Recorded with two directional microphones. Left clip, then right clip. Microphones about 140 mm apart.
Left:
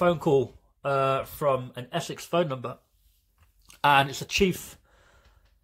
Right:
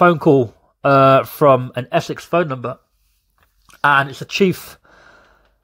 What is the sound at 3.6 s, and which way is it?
Speech, 15° right (ahead or behind).